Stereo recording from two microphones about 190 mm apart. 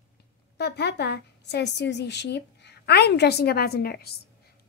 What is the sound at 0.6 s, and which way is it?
A woman's voice, 60° left (ahead or behind).